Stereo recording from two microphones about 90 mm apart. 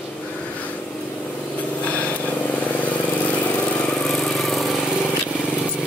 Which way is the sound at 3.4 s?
15° left (ahead or behind).